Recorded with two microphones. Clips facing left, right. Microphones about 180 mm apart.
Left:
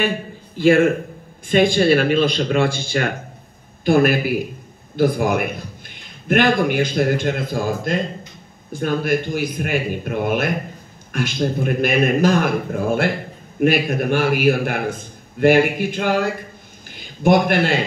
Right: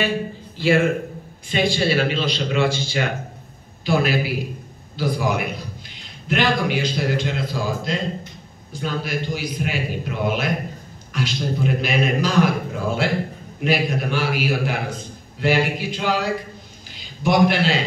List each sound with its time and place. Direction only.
0.6 s a man's voice: 50° left (ahead or behind)